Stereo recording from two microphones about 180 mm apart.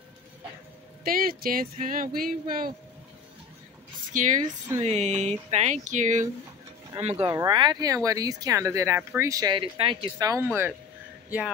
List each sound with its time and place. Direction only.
1.0 s speech: 55° right (ahead or behind)
4.1 s speech: 45° right (ahead or behind)
7.2 s speech: 20° right (ahead or behind)